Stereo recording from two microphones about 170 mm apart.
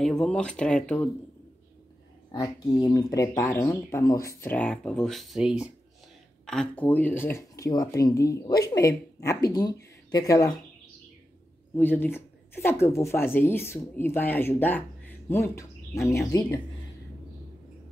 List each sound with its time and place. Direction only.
0.0 s speech: 5° left (ahead or behind)
2.3 s speech: 20° left (ahead or behind)
11.7 s speech: 10° left (ahead or behind)